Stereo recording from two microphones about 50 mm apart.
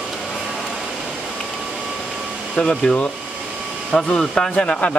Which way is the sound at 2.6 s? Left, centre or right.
Centre.